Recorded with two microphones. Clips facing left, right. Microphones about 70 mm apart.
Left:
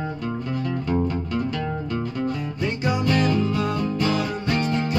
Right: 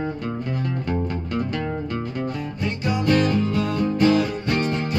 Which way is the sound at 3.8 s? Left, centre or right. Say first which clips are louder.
Right 5 dB; right.